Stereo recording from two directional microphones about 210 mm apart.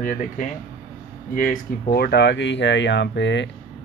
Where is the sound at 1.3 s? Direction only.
45° left (ahead or behind).